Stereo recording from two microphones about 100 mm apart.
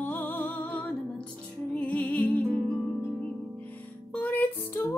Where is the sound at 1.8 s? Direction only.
15° left (ahead or behind).